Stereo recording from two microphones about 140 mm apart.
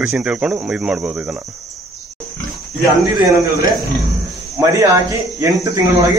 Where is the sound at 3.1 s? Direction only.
25° right (ahead or behind).